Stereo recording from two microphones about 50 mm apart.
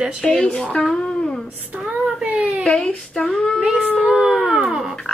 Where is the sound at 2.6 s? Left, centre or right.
Centre.